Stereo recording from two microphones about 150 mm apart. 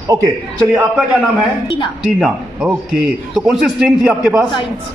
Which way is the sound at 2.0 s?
5° right (ahead or behind).